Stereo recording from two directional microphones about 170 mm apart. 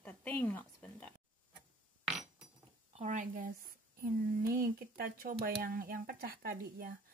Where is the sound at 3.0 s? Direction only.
50° right (ahead or behind).